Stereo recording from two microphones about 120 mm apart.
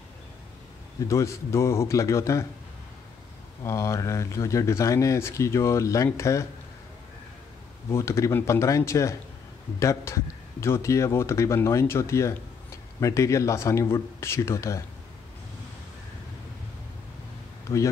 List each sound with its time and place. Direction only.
1.0 s speech: 25° left (ahead or behind)
3.6 s speech: 25° left (ahead or behind)
7.9 s speech: 25° left (ahead or behind)